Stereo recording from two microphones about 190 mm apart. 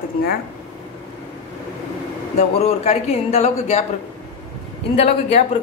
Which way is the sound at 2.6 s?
35° left (ahead or behind).